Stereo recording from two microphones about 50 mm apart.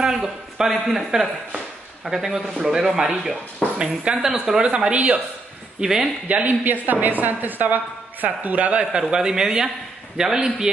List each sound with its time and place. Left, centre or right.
0.0 s a man's voice: centre
4.6 s speech: right
5.8 s speech: centre
6.2 s a woman's voice: right
9.1 s speech: centre